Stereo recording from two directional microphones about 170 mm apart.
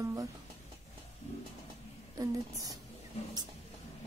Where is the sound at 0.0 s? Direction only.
20° right (ahead or behind).